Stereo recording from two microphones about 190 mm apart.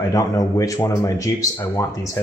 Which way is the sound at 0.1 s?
20° left (ahead or behind).